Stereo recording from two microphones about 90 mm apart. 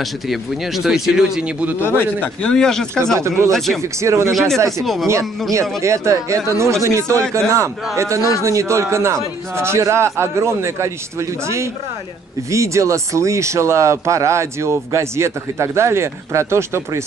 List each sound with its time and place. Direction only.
0.0 s speech: centre (ahead or behind)
1.8 s a man's voice: 25° left (ahead or behind)
2.5 s speech: 5° left (ahead or behind)
3.2 s speech: 30° right (ahead or behind)
3.5 s speech: 5° left (ahead or behind)
3.8 s speech: 35° right (ahead or behind)
4.3 s speech: centre (ahead or behind)
5.5 s speech: 35° right (ahead or behind)